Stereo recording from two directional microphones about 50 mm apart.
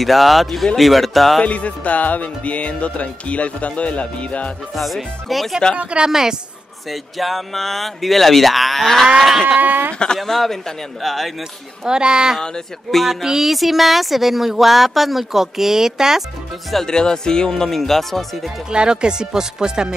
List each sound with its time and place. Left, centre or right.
0.0 s speech: centre
1.4 s music: left
4.7 s speech: centre
5.8 s a woman's voice: right
6.0 s speech: centre
6.9 s speech: centre
9.6 s speech: right
9.9 s speech: centre
11.8 s speech: centre
12.4 s speech: centre
16.7 s speech: centre
18.7 s speech: centre